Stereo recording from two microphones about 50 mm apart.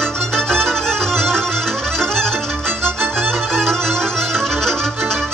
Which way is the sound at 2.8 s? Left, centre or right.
Right.